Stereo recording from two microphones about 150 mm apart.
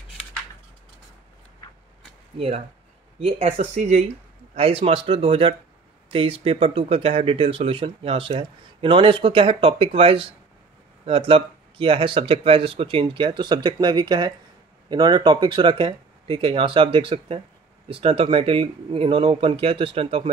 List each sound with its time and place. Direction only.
2.3 s speech: 40° right (ahead or behind)